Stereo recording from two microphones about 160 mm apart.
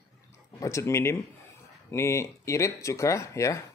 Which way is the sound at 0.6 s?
20° left (ahead or behind).